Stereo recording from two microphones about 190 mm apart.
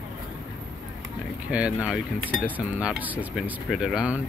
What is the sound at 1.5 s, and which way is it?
Speech, 5° right (ahead or behind).